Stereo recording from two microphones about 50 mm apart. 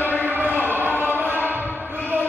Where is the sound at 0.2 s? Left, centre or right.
Right.